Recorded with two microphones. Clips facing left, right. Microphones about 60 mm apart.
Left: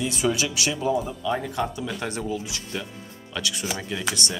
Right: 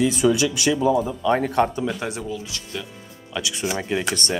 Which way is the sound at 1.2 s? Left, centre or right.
Right.